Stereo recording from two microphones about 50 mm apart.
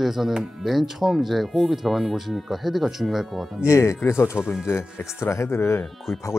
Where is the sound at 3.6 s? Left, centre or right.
Left.